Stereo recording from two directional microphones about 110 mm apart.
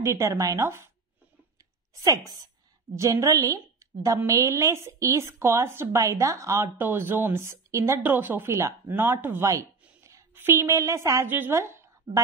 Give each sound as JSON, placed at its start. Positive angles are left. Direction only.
{"t": 0.0, "sound": "speech", "side_deg": -25}
{"t": 2.0, "sound": "a woman's voice", "side_deg": -35}